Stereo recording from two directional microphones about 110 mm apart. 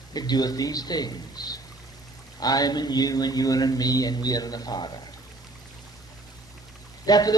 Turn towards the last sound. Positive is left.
turn(degrees=35)  # may be behind; listen again after turning